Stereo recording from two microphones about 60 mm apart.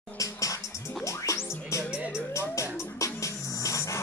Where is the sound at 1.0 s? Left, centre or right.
Left.